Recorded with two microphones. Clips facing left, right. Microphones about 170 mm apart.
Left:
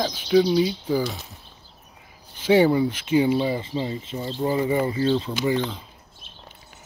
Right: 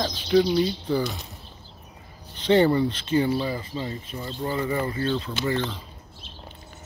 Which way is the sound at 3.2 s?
20° left (ahead or behind).